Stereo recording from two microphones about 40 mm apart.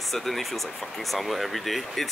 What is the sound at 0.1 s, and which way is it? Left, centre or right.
Speech, centre.